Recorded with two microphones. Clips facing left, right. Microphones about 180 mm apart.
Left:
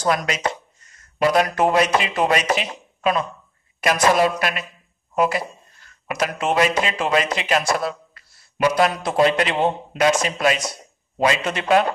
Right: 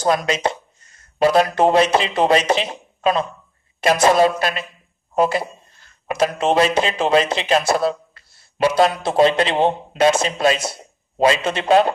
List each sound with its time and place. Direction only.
0.0 s speech: 30° right (ahead or behind)